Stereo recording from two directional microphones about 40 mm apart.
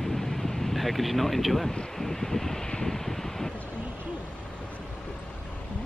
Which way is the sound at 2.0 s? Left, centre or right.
Centre.